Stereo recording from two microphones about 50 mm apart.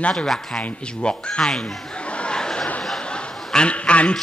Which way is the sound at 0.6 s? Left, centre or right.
Left.